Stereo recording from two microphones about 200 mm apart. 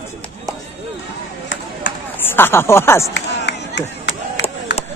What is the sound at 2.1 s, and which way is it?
Speech, 10° left (ahead or behind).